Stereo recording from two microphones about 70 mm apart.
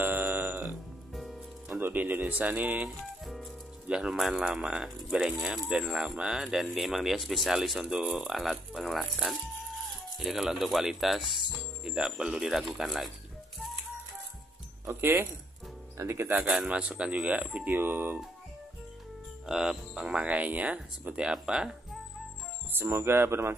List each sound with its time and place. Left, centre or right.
0.0 s music: right
1.8 s speech: right; by 13.1 s centre
14.9 s speech: right
16.6 s speech: centre
17.7 s speech: right
19.4 s speech: centre
22.7 s speech: right